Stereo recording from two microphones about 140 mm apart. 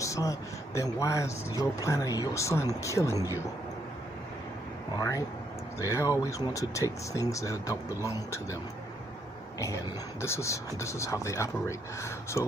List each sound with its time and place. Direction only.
0.0 s a man's voice: 25° left (ahead or behind)
4.9 s speech: 25° left (ahead or behind)
10.2 s speech: 20° left (ahead or behind)